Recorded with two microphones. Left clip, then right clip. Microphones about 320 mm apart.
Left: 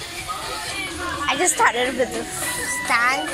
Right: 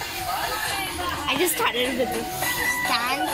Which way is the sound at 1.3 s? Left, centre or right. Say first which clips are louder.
Left 5 dB; centre.